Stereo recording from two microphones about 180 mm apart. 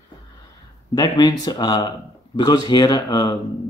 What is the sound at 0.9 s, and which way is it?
Speech, 20° left (ahead or behind).